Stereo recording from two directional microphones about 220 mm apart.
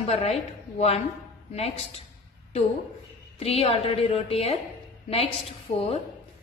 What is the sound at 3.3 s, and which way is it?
A woman's voice, 25° left (ahead or behind).